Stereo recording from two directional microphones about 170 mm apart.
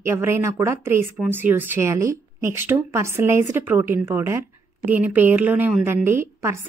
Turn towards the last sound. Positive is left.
turn(degrees=-15)  # may be behind; listen again after turning